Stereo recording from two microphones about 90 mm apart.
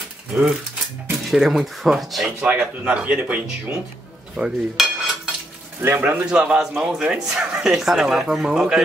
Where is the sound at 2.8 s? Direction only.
15° right (ahead or behind).